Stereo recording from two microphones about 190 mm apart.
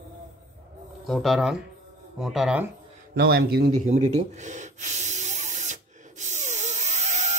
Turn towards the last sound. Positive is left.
turn(degrees=-40)  # may be behind; listen again after turning